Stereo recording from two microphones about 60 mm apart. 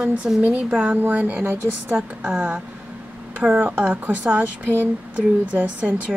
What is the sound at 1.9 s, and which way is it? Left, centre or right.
A woman's voice, centre.